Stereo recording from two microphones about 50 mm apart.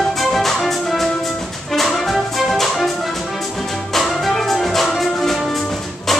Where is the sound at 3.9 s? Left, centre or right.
Centre.